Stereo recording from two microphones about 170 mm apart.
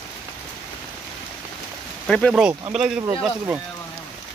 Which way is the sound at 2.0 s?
5° left (ahead or behind).